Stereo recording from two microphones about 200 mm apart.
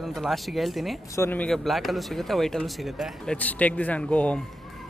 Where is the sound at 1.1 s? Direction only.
10° left (ahead or behind).